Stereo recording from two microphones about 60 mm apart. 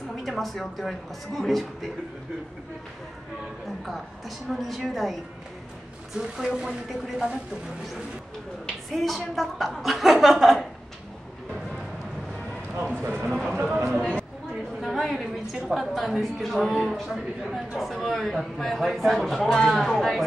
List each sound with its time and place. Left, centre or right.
0.2 s a woman's voice: centre
3.6 s a woman's voice: centre
8.9 s a woman's voice: centre
13.3 s speech: centre
14.8 s a woman's voice: centre